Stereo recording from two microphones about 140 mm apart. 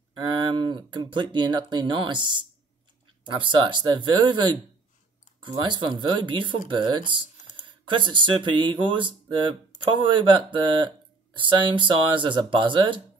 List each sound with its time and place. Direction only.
0.2 s speech: 30° right (ahead or behind)